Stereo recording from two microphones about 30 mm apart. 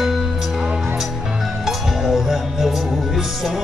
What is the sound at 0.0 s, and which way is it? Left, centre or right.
Music, centre.